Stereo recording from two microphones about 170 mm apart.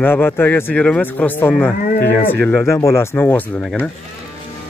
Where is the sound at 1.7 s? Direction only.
55° left (ahead or behind).